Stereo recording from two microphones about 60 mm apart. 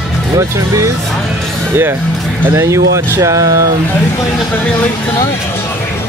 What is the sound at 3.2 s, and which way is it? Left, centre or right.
Speech, right.